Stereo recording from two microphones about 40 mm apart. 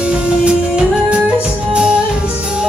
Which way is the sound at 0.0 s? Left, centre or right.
Right.